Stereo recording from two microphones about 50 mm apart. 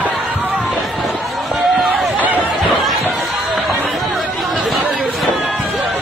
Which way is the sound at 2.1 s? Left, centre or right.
Right.